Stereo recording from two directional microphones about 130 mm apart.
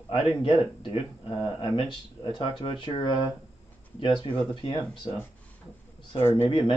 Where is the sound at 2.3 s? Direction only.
40° left (ahead or behind).